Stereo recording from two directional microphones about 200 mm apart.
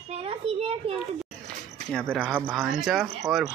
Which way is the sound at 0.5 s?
30° right (ahead or behind).